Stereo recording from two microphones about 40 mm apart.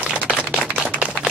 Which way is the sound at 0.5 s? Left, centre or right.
Right.